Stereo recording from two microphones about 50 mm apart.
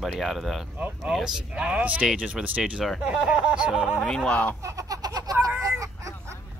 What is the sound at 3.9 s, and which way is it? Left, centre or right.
Speech, centre.